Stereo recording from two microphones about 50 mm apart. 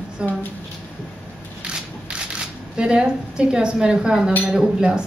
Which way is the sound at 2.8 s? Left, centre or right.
Centre.